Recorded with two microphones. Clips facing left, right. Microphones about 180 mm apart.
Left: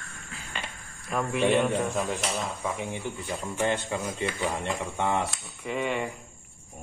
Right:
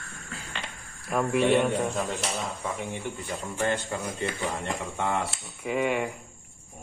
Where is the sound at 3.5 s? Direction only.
15° left (ahead or behind).